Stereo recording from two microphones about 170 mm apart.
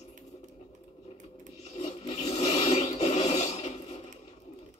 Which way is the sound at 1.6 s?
40° left (ahead or behind).